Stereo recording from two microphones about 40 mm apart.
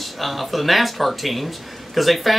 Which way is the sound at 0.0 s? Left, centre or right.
Centre.